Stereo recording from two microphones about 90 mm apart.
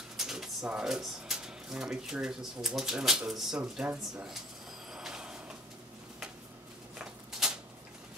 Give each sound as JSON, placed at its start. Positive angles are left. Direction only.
{"t": 0.2, "sound": "speech", "side_deg": -5}
{"t": 4.9, "sound": "vehicle", "side_deg": -5}
{"t": 7.0, "sound": "a sound", "side_deg": -5}